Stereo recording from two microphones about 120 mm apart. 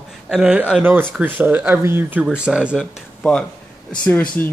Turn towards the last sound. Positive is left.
turn(degrees=10)  # may be behind; listen again after turning